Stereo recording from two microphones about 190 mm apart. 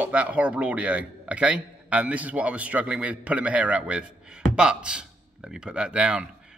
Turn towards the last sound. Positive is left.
turn(degrees=-5)  # may be behind; listen again after turning